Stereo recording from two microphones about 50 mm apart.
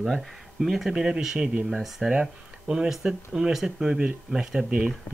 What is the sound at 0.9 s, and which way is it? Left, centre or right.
Speech, centre.